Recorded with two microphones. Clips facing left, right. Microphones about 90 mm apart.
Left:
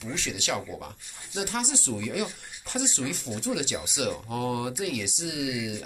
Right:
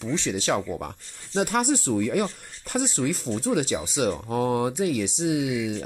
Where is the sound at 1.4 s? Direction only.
45° right (ahead or behind).